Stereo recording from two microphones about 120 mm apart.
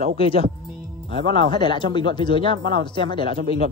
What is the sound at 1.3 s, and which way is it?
Speech, 40° left (ahead or behind).